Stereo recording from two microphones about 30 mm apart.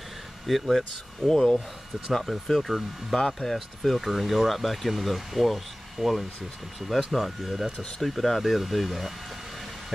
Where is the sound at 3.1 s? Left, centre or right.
Centre.